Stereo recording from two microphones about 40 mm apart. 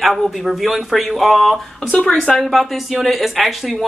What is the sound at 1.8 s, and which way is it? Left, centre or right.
Speech, centre.